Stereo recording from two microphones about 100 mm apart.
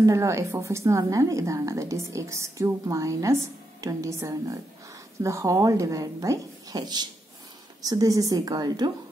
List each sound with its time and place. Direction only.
0.0 s a woman's voice: 30° right (ahead or behind)